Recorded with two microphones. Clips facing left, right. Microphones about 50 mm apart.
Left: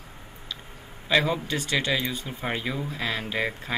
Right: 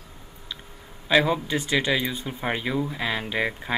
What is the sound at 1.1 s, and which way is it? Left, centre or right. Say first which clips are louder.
Speech: right 3 dB; centre.